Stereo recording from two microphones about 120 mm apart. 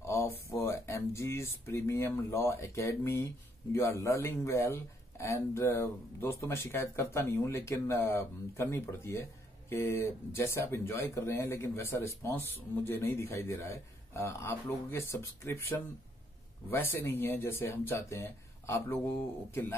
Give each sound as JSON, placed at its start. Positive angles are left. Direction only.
{"t": 0.0, "sound": "speech", "side_deg": 25}